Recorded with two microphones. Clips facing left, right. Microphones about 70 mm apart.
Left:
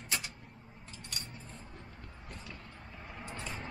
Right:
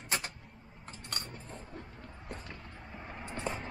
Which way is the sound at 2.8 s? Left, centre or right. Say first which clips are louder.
Right 3 dB; right.